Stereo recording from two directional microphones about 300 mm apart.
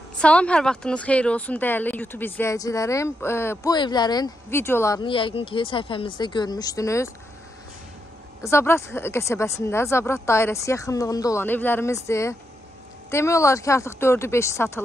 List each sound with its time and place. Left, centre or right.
0.2 s speech: centre
8.4 s speech: centre